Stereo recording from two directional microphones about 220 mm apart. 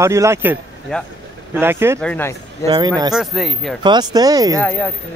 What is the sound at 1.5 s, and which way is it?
Speech, 10° right (ahead or behind).